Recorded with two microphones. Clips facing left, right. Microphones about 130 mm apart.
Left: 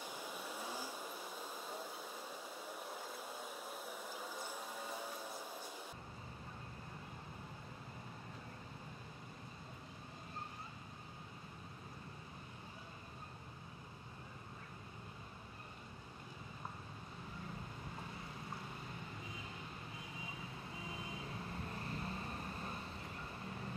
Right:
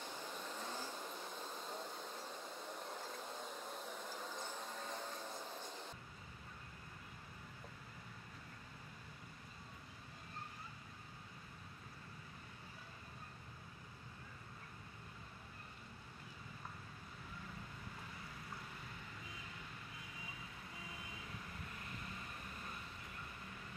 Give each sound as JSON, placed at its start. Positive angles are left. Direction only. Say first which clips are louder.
{"t": 0.0, "sound": "vehicle", "louder": "left 1 dB", "side_deg": 10}
{"t": 20.8, "sound": "vehicle", "louder": "left 6 dB", "side_deg": 30}
{"t": 23.4, "sound": "a sound", "louder": "left 6 dB", "side_deg": 35}